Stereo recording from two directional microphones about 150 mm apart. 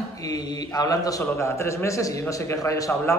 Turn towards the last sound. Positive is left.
turn(degrees=20)  # may be behind; listen again after turning